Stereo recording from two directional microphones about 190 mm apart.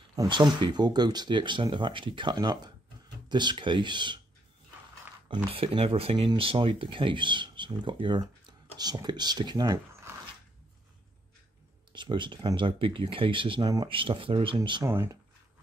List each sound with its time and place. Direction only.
0.1 s speech: 20° right (ahead or behind)
5.3 s speech: 25° right (ahead or behind)
11.9 s speech: 25° right (ahead or behind)
14.9 s speech: 15° right (ahead or behind)